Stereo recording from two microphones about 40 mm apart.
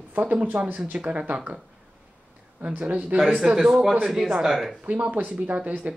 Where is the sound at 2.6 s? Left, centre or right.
Right.